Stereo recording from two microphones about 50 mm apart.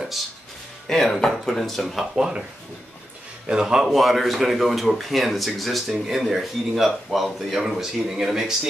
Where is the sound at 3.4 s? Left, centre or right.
Centre.